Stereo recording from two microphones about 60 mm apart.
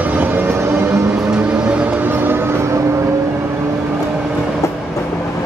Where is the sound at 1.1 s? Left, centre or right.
Centre.